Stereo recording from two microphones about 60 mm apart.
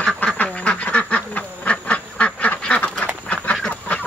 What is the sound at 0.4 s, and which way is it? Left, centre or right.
Duck, left.